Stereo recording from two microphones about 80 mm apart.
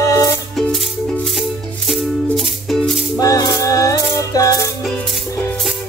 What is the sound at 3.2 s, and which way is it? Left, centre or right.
Music, left.